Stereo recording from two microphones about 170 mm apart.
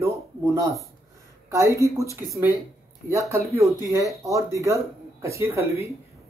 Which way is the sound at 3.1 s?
15° right (ahead or behind).